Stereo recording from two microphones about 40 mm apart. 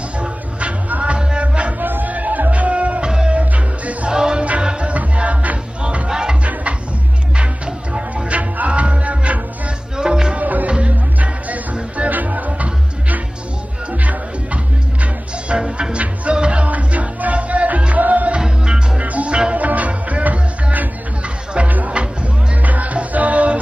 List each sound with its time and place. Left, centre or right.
0.2 s music: right
1.1 s music: right
1.8 s music: right
4.1 s music: right
6.0 s music: centre
7.3 s music: right
9.9 s music: centre
10.3 s music: right
15.4 s music: right